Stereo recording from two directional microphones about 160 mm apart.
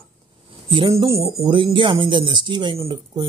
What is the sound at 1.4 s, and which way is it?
Speech, 30° right (ahead or behind).